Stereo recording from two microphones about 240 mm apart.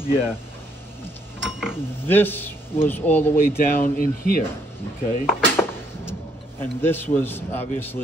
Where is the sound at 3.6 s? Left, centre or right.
Left.